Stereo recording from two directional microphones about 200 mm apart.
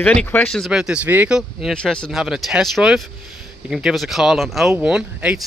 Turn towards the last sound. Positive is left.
turn(degrees=-5)  # may be behind; listen again after turning